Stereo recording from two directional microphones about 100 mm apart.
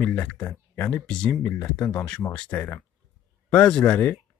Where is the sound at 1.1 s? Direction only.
10° left (ahead or behind).